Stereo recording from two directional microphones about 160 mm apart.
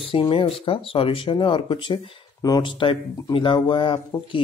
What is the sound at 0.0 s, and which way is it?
Speech, 35° left (ahead or behind).